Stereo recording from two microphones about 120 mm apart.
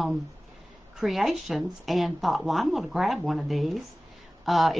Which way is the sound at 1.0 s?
Centre (ahead or behind).